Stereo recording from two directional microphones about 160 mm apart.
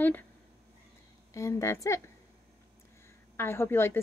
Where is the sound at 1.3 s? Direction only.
20° left (ahead or behind).